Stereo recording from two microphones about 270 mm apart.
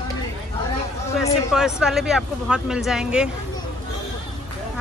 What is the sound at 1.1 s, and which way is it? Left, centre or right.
Speech, centre.